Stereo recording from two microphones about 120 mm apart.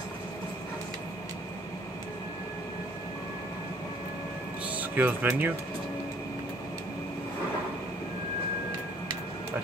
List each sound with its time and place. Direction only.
4.7 s speech: 15° right (ahead or behind)